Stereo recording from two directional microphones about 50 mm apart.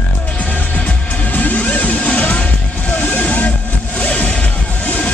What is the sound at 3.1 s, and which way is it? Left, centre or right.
Vehicle, left.